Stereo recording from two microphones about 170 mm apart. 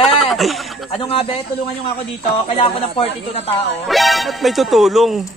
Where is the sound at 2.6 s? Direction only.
35° left (ahead or behind).